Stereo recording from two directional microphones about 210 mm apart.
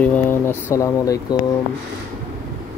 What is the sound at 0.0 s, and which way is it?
Speech, 5° left (ahead or behind).